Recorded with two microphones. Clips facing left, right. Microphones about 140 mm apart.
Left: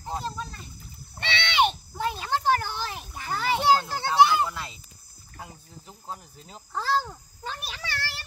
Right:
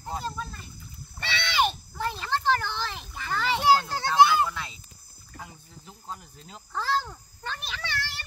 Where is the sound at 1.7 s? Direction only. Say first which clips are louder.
Left 2 dB; 15° left (ahead or behind).